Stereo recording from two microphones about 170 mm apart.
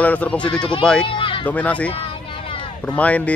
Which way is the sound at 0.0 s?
10° left (ahead or behind).